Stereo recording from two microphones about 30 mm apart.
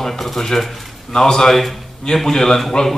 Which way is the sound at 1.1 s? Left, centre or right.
Left.